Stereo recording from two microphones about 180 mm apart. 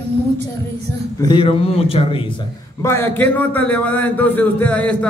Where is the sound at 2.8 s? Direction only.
15° left (ahead or behind).